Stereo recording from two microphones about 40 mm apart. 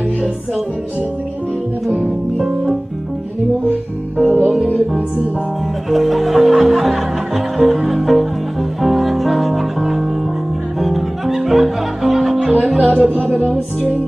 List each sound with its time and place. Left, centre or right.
2.3 s music: centre
4.2 s music: right
5.9 s music: centre
12.8 s music: right